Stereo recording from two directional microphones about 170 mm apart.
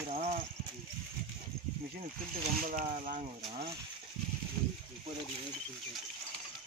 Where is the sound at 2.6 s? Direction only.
50° right (ahead or behind).